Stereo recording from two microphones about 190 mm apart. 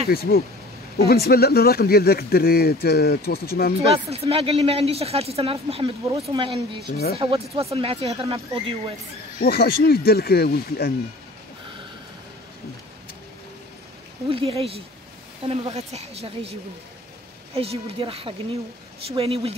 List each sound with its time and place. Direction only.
0.1 s speech: 55° left (ahead or behind)
4.1 s speech: 30° right (ahead or behind)
9.4 s speech: 55° left (ahead or behind)
14.3 s speech: 30° right (ahead or behind)
17.6 s speech: 30° right (ahead or behind)